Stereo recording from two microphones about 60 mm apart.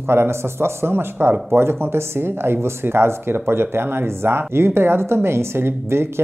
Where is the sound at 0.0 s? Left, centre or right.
Right.